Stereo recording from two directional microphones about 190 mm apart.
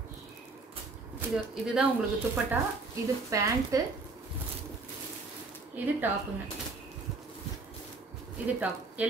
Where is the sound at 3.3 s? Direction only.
15° right (ahead or behind).